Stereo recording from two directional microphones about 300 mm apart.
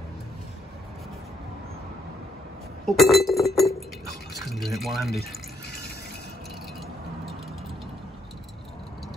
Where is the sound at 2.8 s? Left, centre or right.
Centre.